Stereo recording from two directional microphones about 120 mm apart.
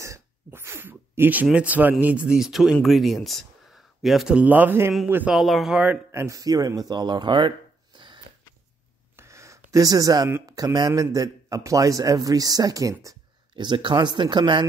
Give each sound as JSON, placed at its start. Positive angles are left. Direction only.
{"t": 0.0, "sound": "speech", "side_deg": -25}
{"t": 5.3, "sound": "speech", "side_deg": 0}
{"t": 6.1, "sound": "a man's voice", "side_deg": -30}
{"t": 9.1, "sound": "a sound", "side_deg": -25}
{"t": 10.4, "sound": "a man's voice", "side_deg": -30}
{"t": 13.6, "sound": "a man's voice", "side_deg": -40}